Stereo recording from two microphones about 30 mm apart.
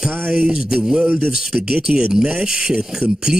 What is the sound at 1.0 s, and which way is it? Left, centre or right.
Speech, right.